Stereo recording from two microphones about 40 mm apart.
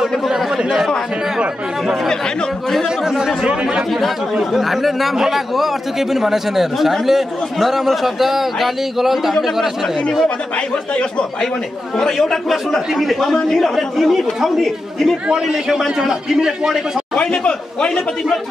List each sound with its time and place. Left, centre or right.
0.6 s speech: centre
3.1 s a man's voice: centre
12.0 s a man's voice: centre
17.4 s speech: left